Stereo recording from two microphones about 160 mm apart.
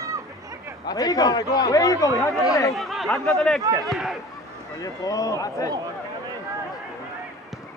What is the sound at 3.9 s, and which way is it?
Speech, centre (ahead or behind).